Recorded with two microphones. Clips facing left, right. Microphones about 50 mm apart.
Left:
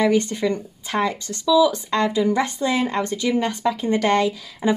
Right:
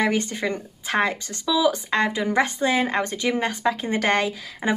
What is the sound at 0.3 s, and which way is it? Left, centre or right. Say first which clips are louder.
Speech: left 4 dB; right.